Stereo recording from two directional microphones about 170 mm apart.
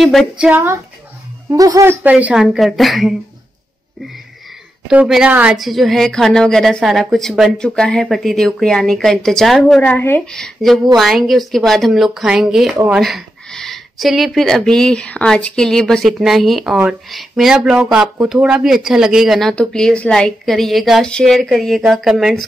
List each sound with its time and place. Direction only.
0.0 s speech: centre (ahead or behind)
1.5 s speech: 20° right (ahead or behind); by 3.2 s centre (ahead or behind)
4.8 s speech: 5° right (ahead or behind)